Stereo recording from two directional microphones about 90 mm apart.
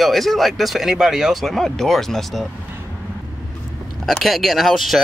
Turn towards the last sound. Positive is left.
turn(degrees=0)  # may be behind; listen again after turning